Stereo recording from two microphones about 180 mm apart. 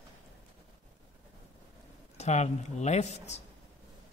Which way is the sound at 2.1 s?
40° left (ahead or behind).